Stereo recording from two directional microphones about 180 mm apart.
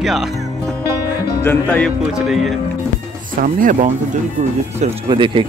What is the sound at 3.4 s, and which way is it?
Speech, 50° right (ahead or behind).